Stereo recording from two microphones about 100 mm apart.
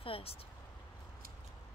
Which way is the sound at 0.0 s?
65° left (ahead or behind).